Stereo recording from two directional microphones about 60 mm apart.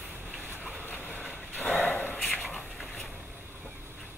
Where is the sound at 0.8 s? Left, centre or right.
Left.